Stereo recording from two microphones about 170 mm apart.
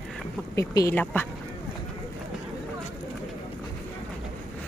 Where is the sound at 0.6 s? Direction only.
15° left (ahead or behind).